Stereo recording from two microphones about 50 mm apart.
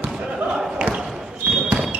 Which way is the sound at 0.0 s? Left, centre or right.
Centre.